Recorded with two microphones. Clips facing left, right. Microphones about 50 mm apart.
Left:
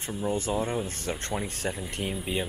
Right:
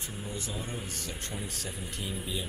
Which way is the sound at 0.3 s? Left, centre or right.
Left.